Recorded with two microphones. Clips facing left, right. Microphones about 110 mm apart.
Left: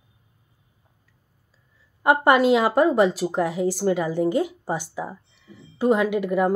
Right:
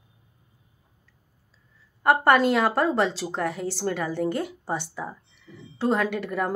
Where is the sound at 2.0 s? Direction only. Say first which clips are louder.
Left 2 dB; 10° left (ahead or behind).